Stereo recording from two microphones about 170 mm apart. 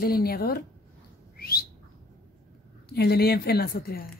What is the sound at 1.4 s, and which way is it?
Whistling, 65° left (ahead or behind).